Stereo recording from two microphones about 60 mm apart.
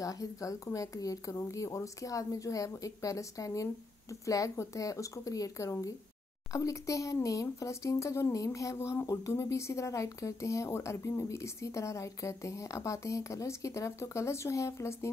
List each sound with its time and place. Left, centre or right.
0.0 s a woman's voice: left
9.0 s a woman's voice: left
9.3 s speech: left